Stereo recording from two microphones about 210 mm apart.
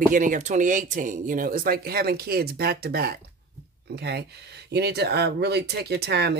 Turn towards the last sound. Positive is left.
turn(degrees=-50)  # may be behind; listen again after turning